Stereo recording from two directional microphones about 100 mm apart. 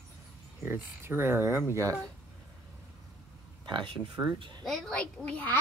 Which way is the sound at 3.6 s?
55° right (ahead or behind).